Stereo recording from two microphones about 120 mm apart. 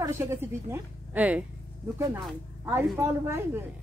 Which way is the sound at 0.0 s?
25° right (ahead or behind).